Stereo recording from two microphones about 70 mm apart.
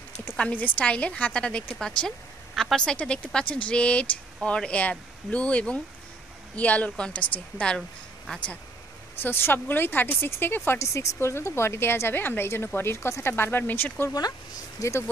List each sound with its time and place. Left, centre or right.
0.4 s a woman's voice: left
9.2 s a woman's voice: left
10.8 s a woman's voice: left
14.1 s speech: left
14.8 s speech: left